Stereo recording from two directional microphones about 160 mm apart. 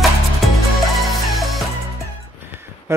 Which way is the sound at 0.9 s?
Centre (ahead or behind).